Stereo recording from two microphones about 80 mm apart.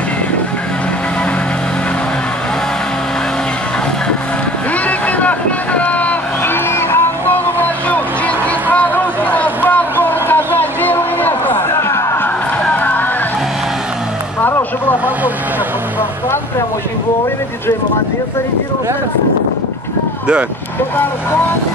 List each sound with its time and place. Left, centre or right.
4.8 s boat: centre
8.7 s a sound: centre; by 12.3 s left
12.6 s music: left
14.4 s vehicle: left